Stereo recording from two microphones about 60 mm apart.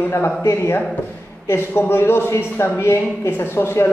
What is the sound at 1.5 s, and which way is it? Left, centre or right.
A man's voice, left.